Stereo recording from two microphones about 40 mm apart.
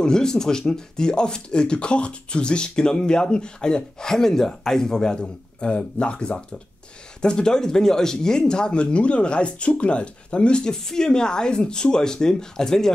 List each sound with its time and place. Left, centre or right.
0.0 s speech: centre